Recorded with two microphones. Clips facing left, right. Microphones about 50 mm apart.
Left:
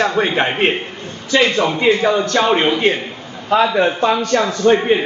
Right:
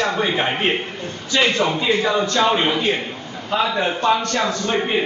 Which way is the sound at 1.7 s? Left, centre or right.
Left.